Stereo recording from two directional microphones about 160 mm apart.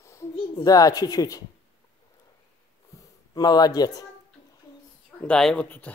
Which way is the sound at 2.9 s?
25° left (ahead or behind).